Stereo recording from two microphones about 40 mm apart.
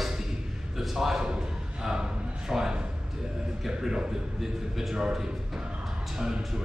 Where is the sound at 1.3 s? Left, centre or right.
Centre.